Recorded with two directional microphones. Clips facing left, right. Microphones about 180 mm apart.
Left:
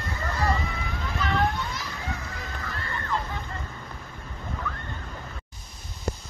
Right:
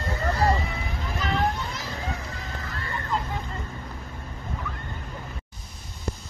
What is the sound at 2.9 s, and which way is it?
Vehicle, 15° right (ahead or behind).